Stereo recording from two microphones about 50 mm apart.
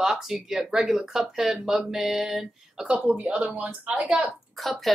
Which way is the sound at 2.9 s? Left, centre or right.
Right.